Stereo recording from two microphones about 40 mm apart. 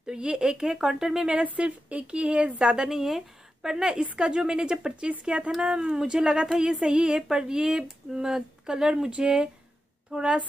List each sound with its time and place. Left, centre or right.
0.0 s speech: right
1.4 s speech: right
2.9 s speech: centre
10.1 s speech: right